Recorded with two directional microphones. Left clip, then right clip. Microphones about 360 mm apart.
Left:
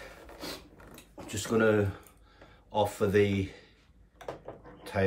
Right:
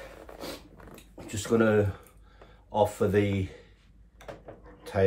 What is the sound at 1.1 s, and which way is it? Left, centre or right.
Speech, centre.